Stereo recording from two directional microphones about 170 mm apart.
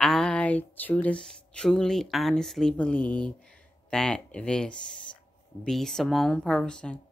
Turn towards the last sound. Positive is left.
turn(degrees=5)  # may be behind; listen again after turning